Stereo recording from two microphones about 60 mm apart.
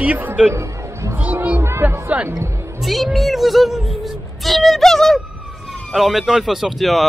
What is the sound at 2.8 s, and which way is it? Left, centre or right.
Speech, centre.